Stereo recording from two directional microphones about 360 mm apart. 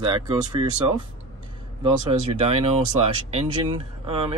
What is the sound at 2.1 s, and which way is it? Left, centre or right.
Speech, centre.